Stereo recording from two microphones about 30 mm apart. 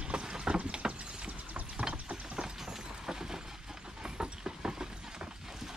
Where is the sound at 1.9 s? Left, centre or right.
Right.